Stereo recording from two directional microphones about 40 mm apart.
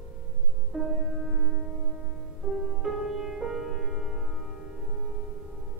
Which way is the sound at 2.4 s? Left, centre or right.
Right.